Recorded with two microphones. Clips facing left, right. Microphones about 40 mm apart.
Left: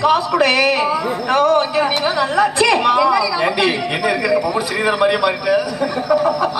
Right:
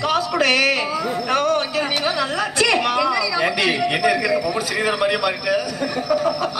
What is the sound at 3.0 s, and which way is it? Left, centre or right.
Speech, centre.